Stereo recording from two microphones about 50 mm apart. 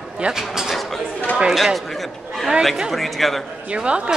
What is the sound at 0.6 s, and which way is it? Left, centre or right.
A man's voice, centre.